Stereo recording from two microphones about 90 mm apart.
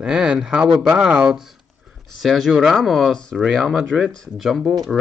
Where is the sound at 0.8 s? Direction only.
10° right (ahead or behind).